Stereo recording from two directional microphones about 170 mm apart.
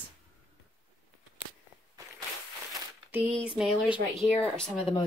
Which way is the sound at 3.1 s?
10° right (ahead or behind).